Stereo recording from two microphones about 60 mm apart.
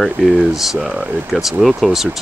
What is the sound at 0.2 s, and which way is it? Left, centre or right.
Speech, right.